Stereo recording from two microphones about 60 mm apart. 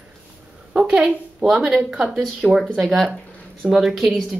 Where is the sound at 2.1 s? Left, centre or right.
Centre.